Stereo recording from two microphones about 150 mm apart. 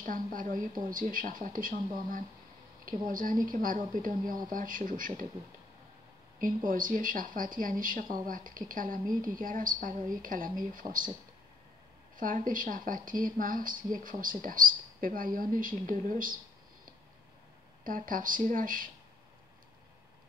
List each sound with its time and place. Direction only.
0.0 s speech: 65° right (ahead or behind)
3.1 s a woman's voice: 65° right (ahead or behind)
6.4 s a woman's voice: 65° right (ahead or behind)
12.2 s a woman's voice: 65° right (ahead or behind)
17.8 s speech: 65° right (ahead or behind)